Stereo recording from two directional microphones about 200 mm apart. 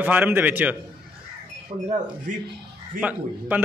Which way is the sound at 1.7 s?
25° right (ahead or behind).